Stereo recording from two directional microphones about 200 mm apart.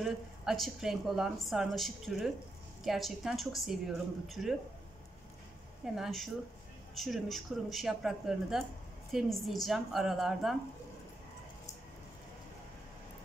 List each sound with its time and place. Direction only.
0.0 s a woman's voice: centre (ahead or behind)
5.9 s a woman's voice: centre (ahead or behind)